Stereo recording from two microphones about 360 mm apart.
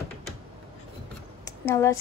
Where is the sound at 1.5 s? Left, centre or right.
Centre.